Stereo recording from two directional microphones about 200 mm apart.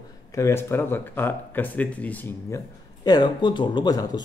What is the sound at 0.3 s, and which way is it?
Speech, 15° left (ahead or behind).